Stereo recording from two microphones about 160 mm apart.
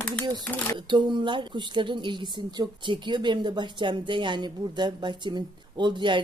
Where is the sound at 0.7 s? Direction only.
30° right (ahead or behind).